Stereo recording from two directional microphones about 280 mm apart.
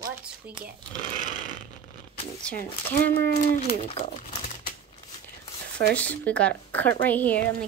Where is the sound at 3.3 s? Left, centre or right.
Left.